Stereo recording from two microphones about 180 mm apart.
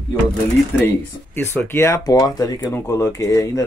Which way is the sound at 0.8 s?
10° left (ahead or behind).